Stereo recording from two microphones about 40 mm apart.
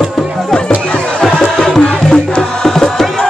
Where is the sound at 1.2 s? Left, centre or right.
Centre.